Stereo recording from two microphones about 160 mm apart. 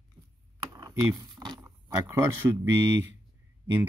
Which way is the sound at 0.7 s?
25° right (ahead or behind).